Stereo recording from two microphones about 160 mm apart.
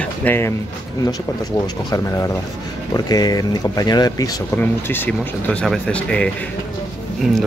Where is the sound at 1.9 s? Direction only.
20° left (ahead or behind).